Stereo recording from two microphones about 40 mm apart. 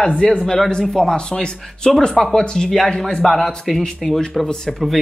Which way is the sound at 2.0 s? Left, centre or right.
Centre.